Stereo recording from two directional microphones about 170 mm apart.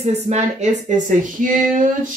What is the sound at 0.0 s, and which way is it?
Speech, 40° right (ahead or behind).